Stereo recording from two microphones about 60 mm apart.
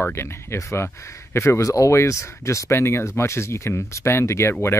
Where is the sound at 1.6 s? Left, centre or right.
Left.